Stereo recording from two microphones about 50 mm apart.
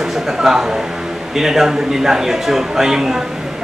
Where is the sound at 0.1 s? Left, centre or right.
Centre.